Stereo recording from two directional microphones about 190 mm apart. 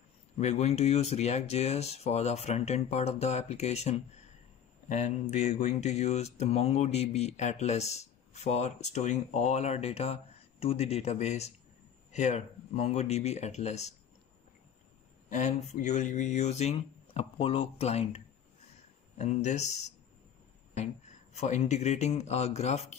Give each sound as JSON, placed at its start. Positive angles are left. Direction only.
{"t": 0.4, "sound": "speech", "side_deg": 35}
{"t": 15.2, "sound": "speech", "side_deg": 40}